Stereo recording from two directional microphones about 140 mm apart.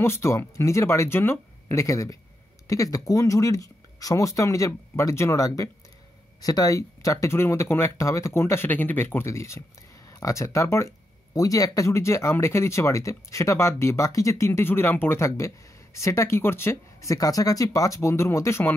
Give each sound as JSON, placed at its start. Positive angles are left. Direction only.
{"t": 0.0, "sound": "speech", "side_deg": 20}